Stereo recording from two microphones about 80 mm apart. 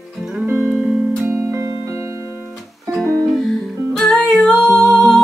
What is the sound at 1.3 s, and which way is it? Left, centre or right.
Music, right.